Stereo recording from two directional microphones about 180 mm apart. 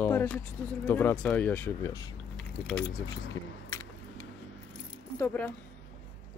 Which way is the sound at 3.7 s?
15° left (ahead or behind).